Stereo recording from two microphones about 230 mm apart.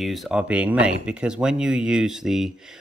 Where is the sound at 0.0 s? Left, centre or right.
Centre.